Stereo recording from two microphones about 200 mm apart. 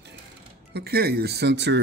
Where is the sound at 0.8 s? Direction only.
50° right (ahead or behind).